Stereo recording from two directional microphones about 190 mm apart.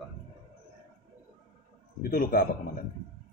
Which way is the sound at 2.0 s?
50° left (ahead or behind).